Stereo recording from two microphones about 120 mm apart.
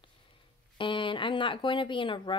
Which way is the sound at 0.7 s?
45° left (ahead or behind).